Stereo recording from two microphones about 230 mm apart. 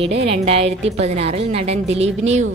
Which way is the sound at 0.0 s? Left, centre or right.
Right.